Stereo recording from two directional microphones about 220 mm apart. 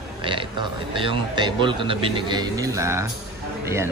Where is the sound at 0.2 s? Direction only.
25° right (ahead or behind).